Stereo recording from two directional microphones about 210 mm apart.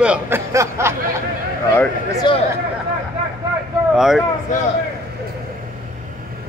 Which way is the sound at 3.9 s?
Centre (ahead or behind).